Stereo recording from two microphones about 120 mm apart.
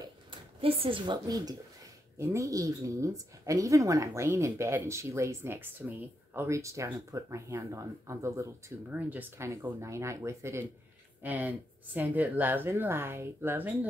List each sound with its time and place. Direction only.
0.0 s a woman's voice: 50° right (ahead or behind); by 13.7 s 15° right (ahead or behind)